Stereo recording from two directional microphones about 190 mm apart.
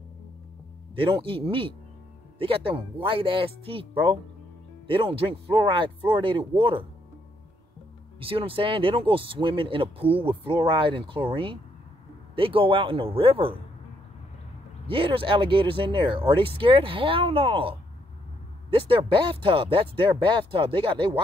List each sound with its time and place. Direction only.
0.9 s speech: 25° right (ahead or behind)
8.2 s speech: 30° right (ahead or behind)
14.9 s speech: 30° right (ahead or behind)